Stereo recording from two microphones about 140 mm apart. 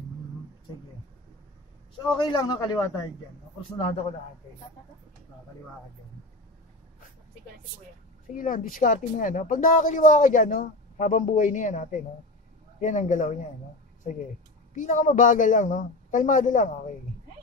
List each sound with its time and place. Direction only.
2.0 s a man's voice: 35° left (ahead or behind)
3.6 s a man's voice: 45° left (ahead or behind)
8.4 s speech: 70° left (ahead or behind)
14.8 s a man's voice: 70° left (ahead or behind)